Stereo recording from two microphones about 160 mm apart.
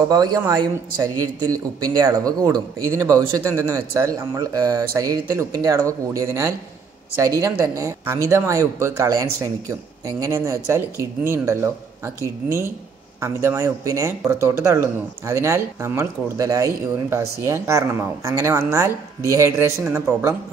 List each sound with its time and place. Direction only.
0.1 s a man's voice: 25° right (ahead or behind)